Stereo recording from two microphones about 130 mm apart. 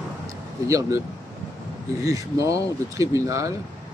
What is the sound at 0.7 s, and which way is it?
Speech, 25° right (ahead or behind).